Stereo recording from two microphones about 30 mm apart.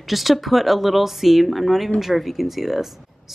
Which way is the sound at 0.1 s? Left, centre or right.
Centre.